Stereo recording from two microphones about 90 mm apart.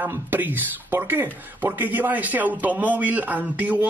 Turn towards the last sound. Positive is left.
turn(degrees=-20)  # may be behind; listen again after turning